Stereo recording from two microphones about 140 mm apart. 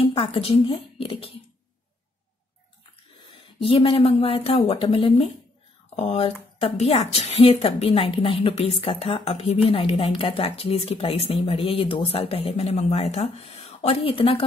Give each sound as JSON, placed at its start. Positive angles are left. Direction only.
{"t": 0.0, "sound": "speech", "side_deg": 40}
{"t": 3.3, "sound": "speech", "side_deg": 40}